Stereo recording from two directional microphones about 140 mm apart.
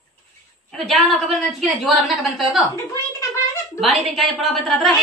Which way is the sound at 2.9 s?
20° left (ahead or behind).